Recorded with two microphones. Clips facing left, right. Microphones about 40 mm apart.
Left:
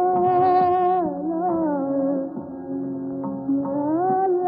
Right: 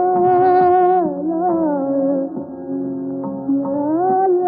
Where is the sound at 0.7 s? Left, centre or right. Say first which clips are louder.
Right 6 dB; centre.